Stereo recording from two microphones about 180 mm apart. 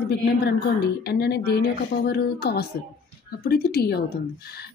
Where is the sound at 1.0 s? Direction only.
60° left (ahead or behind).